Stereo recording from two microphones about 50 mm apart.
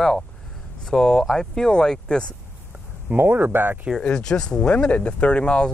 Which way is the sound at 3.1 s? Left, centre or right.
Right.